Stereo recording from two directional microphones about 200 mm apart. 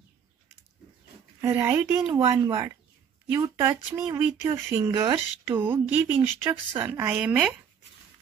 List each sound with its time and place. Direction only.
1.4 s speech: 15° right (ahead or behind)